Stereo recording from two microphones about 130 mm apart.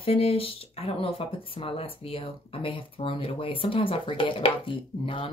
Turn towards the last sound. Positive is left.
turn(degrees=45)  # may be behind; listen again after turning